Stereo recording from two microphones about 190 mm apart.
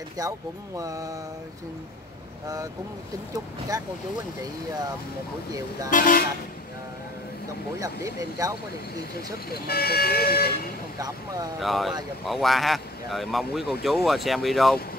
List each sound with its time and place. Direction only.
0.2 s speech: 20° right (ahead or behind)
2.4 s speech: 20° right (ahead or behind)
5.9 s speech: 45° left (ahead or behind)
7.8 s speech: 15° right (ahead or behind)
9.5 s speech: 55° left (ahead or behind)
11.6 s speech: centre (ahead or behind)